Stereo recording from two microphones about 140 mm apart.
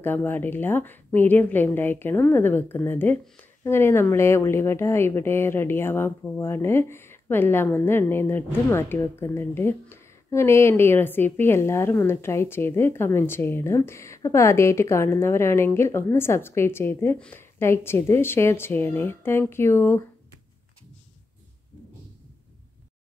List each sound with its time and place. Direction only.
0.0 s speech: 15° left (ahead or behind)